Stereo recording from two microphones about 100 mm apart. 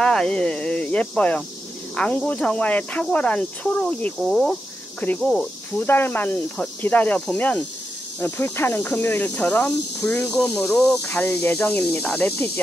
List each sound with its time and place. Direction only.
0.0 s speech: 10° left (ahead or behind)
4.2 s speech: centre (ahead or behind)
5.0 s speech: 10° left (ahead or behind)
5.8 s speech: 20° left (ahead or behind)